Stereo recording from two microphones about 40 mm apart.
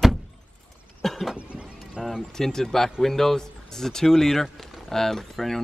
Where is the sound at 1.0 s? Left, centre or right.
Centre.